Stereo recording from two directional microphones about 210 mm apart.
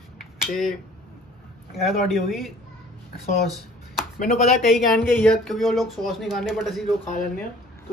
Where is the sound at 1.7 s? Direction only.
Centre (ahead or behind).